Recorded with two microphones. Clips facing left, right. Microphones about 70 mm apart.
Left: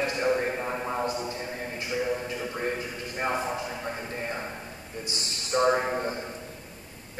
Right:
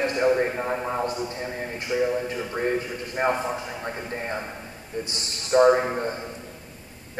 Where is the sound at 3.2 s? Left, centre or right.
Right.